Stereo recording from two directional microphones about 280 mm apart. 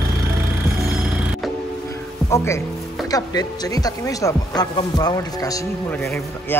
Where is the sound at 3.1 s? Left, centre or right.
Centre.